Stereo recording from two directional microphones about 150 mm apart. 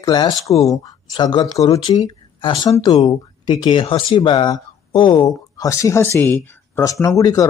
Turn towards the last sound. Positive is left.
turn(degrees=25)  # may be behind; listen again after turning